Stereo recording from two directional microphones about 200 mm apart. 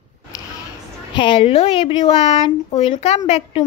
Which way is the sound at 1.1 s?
25° left (ahead or behind).